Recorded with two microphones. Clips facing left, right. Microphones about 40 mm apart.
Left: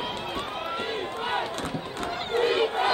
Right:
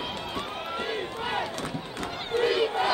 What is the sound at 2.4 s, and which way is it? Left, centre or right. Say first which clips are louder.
Crowd: even; left.